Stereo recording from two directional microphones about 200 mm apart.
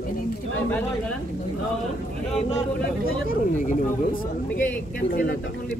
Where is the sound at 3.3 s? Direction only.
40° left (ahead or behind).